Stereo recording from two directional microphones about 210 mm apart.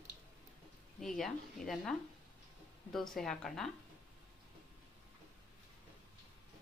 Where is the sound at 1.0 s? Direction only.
Centre (ahead or behind).